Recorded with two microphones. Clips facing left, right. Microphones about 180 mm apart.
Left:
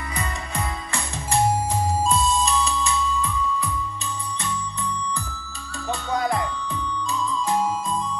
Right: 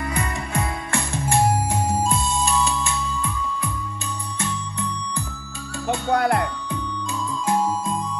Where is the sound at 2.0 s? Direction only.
55° right (ahead or behind).